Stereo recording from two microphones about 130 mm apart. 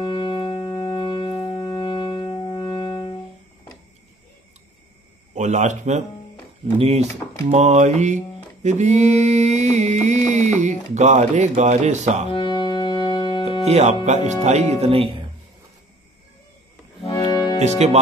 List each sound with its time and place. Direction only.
0.0 s music: 35° left (ahead or behind)
5.3 s speech: 65° right (ahead or behind)
7.4 s a sound: 60° right (ahead or behind)
12.3 s music: 40° left (ahead or behind)
13.7 s a sound: 60° right (ahead or behind)
17.1 s music: 30° left (ahead or behind)
17.6 s speech: 55° right (ahead or behind)